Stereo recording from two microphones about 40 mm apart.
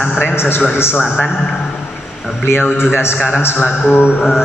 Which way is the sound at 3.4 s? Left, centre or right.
Left.